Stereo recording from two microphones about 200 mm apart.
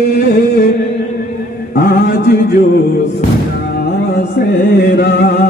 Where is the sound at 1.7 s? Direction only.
50° left (ahead or behind).